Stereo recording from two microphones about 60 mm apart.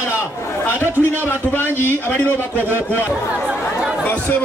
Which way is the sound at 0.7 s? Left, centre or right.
Left.